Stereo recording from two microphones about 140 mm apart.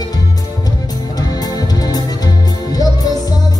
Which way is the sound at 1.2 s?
30° left (ahead or behind).